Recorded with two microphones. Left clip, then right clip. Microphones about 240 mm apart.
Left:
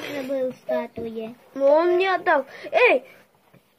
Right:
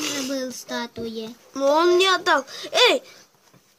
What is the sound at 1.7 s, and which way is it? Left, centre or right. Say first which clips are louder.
Speech: right 2 dB; centre.